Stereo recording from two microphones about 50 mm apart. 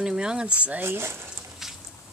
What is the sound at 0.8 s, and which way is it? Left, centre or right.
Speech, right.